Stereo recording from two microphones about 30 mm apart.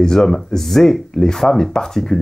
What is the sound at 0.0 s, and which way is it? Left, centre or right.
Speech, centre.